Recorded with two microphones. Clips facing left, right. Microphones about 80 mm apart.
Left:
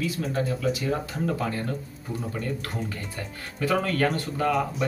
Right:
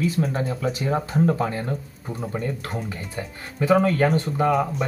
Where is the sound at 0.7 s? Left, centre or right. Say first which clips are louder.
Right 5 dB; right.